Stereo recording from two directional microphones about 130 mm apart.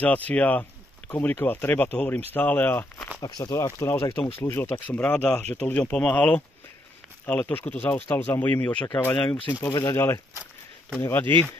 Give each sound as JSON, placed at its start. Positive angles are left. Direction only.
{"t": 0.0, "sound": "speech", "side_deg": 10}
{"t": 3.2, "sound": "speech", "side_deg": 30}
{"t": 9.7, "sound": "speech", "side_deg": 25}